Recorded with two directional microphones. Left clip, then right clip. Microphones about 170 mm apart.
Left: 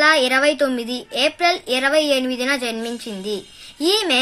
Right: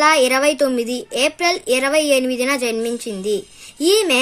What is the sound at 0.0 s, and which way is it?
A child's voice, 55° right (ahead or behind).